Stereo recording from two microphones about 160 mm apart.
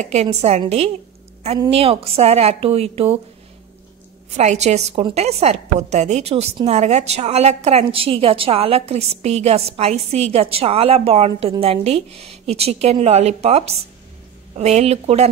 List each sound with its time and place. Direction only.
0.0 s a woman's voice: 45° right (ahead or behind)
4.4 s a woman's voice: 45° right (ahead or behind)